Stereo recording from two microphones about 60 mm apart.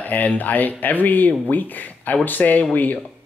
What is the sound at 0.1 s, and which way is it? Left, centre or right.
Speech, left.